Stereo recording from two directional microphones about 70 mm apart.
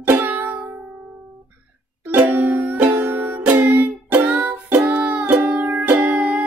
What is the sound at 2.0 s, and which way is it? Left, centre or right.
Music, right.